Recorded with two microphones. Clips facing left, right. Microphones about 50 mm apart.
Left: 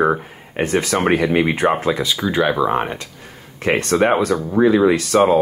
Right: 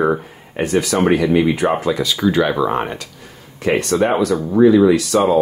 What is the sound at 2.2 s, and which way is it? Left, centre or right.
Speech, centre.